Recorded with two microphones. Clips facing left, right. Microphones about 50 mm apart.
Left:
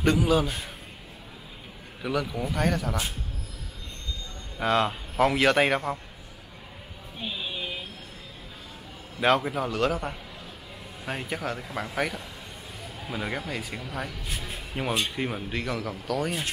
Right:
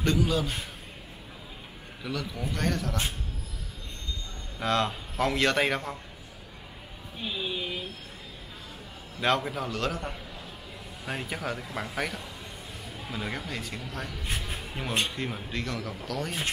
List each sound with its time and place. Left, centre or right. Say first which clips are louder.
0.0 s a man's voice: left 4 dB; centre
2.0 s a man's voice: left 5 dB; centre
4.6 s a man's voice: left 3 dB; centre
9.2 s a man's voice: left 4 dB; centre
14.2 s speech: right 1 dB; right
15.0 s a man's voice: left 3 dB; centre